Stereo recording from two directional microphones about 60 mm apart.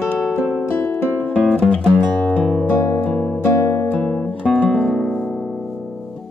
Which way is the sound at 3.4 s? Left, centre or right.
Left.